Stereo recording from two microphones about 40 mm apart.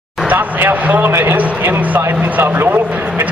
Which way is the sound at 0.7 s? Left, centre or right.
Right.